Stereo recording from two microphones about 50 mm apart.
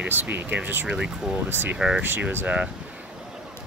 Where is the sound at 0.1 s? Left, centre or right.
Right.